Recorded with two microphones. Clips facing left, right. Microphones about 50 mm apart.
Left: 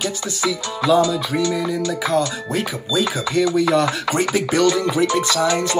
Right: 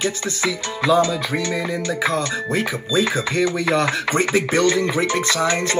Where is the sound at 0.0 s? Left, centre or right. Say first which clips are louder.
Even; right.